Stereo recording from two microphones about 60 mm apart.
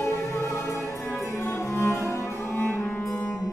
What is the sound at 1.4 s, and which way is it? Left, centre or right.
Music, left.